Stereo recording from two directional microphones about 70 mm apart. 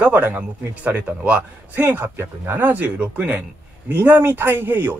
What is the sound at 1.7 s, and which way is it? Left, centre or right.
A man's voice, right.